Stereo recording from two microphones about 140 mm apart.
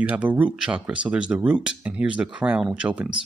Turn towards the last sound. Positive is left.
turn(degrees=-10)  # may be behind; listen again after turning